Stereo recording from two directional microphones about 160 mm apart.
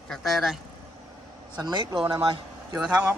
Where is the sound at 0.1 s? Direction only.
Centre (ahead or behind).